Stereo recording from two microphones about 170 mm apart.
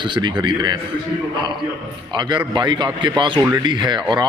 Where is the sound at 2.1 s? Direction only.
25° right (ahead or behind).